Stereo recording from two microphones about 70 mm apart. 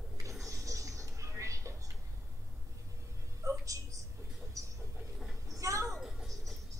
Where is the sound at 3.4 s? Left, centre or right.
Right.